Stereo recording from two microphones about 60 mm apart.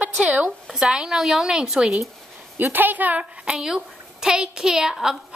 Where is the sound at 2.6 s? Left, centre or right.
Right.